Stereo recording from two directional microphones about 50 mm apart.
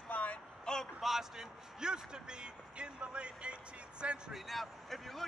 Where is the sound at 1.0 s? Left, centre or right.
Centre.